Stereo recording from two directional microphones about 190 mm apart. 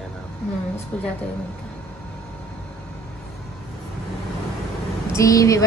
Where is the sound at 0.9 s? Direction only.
10° left (ahead or behind).